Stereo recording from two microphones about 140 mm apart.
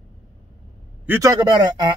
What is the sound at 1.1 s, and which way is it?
Speech, 25° right (ahead or behind).